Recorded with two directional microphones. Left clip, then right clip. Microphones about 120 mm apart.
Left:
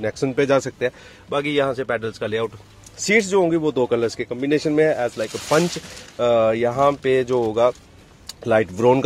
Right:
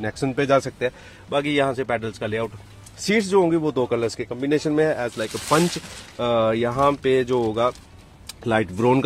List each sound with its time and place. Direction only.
0.0 s speech: 15° left (ahead or behind)
1.5 s speech: 5° left (ahead or behind)
2.2 s speech: 25° left (ahead or behind)
3.0 s speech: 15° left (ahead or behind)